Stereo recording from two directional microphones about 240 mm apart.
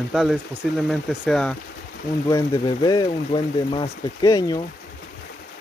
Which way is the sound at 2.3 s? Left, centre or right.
Centre.